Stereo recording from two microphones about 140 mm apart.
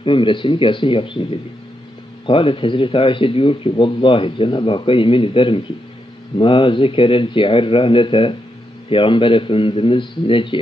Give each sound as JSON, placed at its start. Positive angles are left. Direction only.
{"t": 0.0, "sound": "speech", "side_deg": 35}
{"t": 2.2, "sound": "speech", "side_deg": 40}